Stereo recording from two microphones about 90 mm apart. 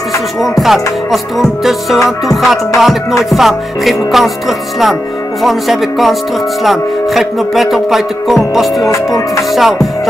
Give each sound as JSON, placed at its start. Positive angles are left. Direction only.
{"t": 0.4, "sound": "music", "side_deg": 0}
{"t": 8.8, "sound": "music", "side_deg": 35}
{"t": 9.5, "sound": "music", "side_deg": 0}